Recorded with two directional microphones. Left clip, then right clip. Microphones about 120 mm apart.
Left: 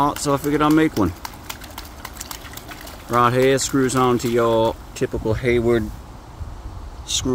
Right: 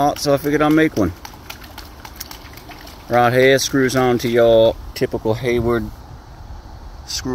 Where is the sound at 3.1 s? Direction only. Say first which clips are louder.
Right 3 dB; 10° right (ahead or behind).